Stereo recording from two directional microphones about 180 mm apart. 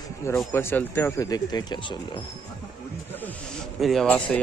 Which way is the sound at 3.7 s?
Centre (ahead or behind).